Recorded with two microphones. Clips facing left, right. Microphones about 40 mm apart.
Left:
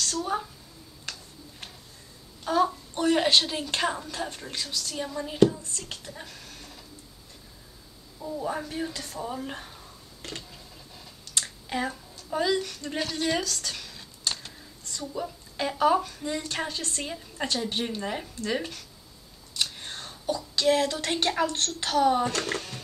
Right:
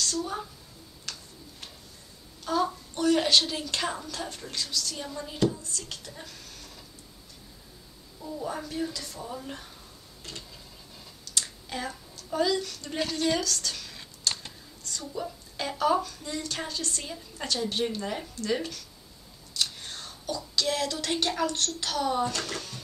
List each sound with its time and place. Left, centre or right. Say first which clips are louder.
0.0 s a woman's voice: left 2 dB; left
2.4 s a woman's voice: left 3 dB; left
5.6 s speech: even; left
6.0 s speech: left 2 dB; centre
8.2 s a woman's voice: left 3 dB; centre
8.5 s a woman's voice: even; left
11.4 s speech: left 5 dB; left
13.2 s a sound: right 1 dB; centre
15.1 s a woman's voice: left 2 dB; centre
15.8 s a woman's voice: left 2 dB; left